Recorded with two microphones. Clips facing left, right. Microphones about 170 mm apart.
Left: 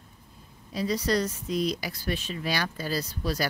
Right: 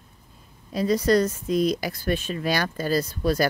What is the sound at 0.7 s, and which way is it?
Speech, 50° right (ahead or behind).